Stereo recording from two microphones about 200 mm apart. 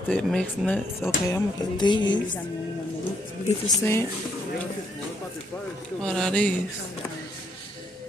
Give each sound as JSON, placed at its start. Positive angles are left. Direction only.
{"t": 0.1, "sound": "speech", "side_deg": 5}
{"t": 1.8, "sound": "a woman's voice", "side_deg": 20}
{"t": 3.6, "sound": "speech", "side_deg": 15}
{"t": 6.0, "sound": "speech", "side_deg": 5}